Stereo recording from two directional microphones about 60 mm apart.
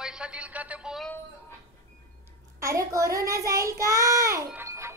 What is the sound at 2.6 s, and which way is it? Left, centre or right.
Child singing, right.